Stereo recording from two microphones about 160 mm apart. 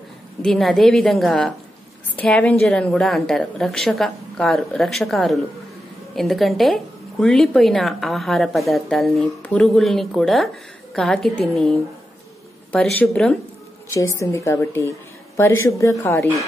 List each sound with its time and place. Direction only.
0.4 s a woman's voice: centre (ahead or behind)
12.7 s speech: 10° left (ahead or behind)
13.8 s speech: 20° left (ahead or behind)